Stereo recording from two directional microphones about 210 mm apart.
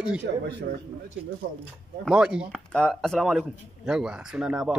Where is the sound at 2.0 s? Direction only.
5° right (ahead or behind).